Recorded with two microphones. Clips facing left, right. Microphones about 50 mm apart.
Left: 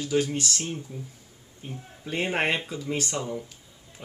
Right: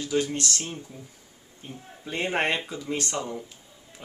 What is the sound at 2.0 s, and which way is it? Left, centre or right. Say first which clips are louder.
Speech: even; centre.